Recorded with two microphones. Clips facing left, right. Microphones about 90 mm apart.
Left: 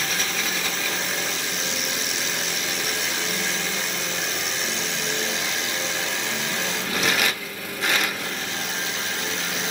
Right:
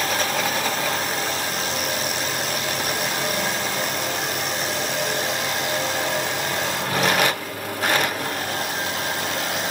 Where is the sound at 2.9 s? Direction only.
50° right (ahead or behind).